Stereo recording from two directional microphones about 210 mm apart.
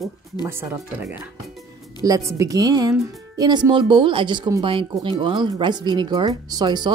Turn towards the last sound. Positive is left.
turn(degrees=-20)  # may be behind; listen again after turning